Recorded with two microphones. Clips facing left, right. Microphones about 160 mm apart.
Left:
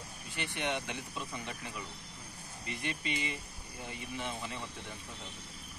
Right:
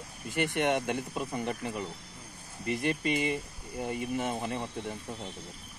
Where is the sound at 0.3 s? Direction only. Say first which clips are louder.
Right 9 dB; 50° right (ahead or behind).